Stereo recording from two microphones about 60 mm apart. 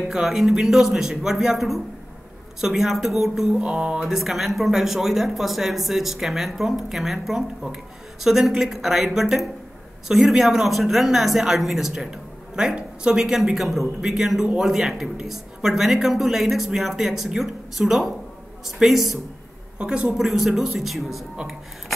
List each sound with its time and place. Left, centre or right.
0.1 s speech: centre
4.0 s speech: centre
19.8 s speech: centre